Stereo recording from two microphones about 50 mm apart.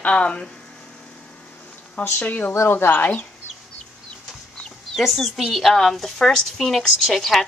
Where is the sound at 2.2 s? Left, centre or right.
Left.